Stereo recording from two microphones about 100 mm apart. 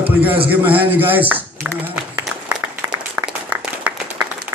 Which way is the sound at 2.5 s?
10° right (ahead or behind).